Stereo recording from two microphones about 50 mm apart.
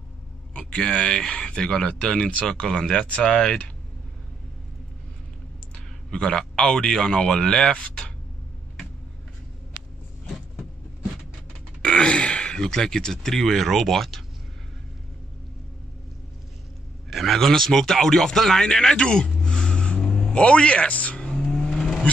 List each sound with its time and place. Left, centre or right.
0.6 s speech: centre
6.0 s speech: centre
11.8 s speech: centre
17.1 s a man's voice: centre; by 21.3 s left
21.5 s vehicle: centre